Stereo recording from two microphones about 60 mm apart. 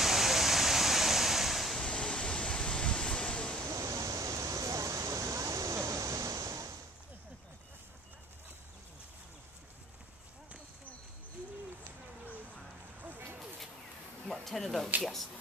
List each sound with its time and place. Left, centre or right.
0.0 s waves: centre
1.8 s waves: centre
3.6 s waterfall: right
14.2 s speech: centre